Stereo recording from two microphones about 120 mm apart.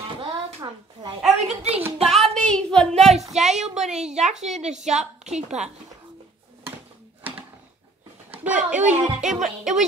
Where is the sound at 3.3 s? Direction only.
70° right (ahead or behind).